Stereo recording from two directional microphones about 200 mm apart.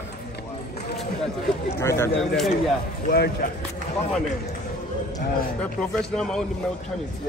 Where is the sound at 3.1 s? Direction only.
55° left (ahead or behind).